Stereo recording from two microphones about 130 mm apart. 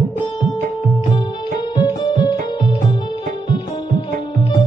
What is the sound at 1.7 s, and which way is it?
Music, 35° left (ahead or behind).